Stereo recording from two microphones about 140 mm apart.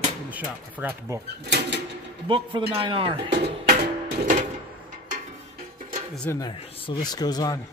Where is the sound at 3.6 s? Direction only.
65° right (ahead or behind).